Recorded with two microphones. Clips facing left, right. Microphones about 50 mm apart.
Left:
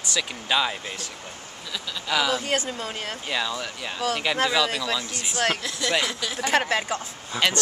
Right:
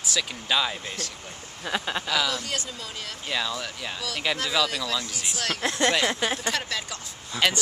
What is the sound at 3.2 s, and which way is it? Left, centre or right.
Speech, centre.